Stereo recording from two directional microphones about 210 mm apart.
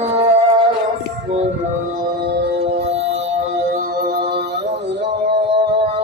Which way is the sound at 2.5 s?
30° right (ahead or behind).